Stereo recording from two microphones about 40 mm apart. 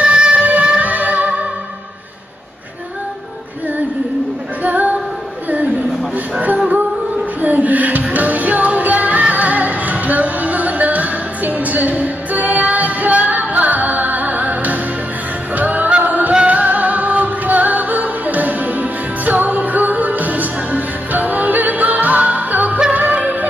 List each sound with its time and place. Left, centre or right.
0.0 s music: right
4.6 s music: right
7.3 s music: right